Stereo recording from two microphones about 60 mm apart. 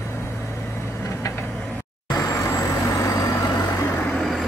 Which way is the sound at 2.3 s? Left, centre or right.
Left.